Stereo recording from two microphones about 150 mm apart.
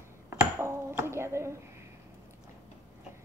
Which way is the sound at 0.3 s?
20° right (ahead or behind).